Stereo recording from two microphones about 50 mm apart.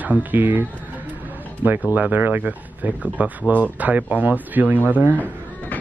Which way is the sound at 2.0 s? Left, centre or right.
Right.